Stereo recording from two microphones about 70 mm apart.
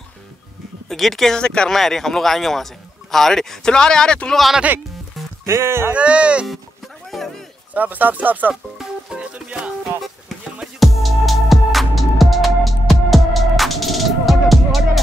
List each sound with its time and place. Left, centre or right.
0.8 s speech: centre
5.4 s speech: right
5.9 s speech: centre
7.1 s a sound: centre
7.7 s speech: right
8.7 s music: centre
10.8 s music: centre